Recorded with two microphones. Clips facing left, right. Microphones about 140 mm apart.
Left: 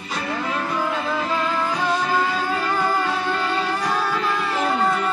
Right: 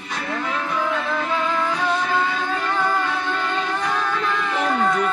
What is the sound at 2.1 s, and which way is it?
Music, 10° left (ahead or behind).